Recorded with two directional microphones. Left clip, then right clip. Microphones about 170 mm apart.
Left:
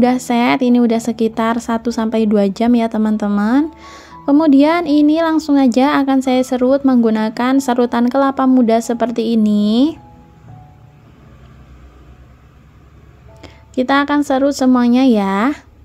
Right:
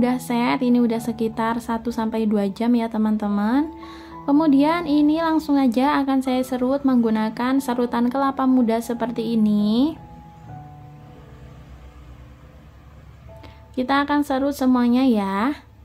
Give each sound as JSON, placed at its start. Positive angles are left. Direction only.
{"t": 0.0, "sound": "speech", "side_deg": 40}
{"t": 13.4, "sound": "speech", "side_deg": 35}